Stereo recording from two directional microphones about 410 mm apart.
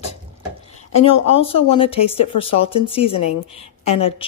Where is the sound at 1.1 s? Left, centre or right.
Left.